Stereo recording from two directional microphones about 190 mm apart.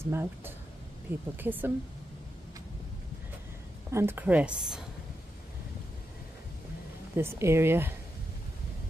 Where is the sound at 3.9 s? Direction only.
10° right (ahead or behind).